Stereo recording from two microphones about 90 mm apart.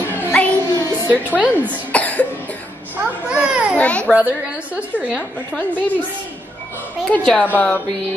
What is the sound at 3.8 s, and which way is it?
Baby cry, 15° left (ahead or behind).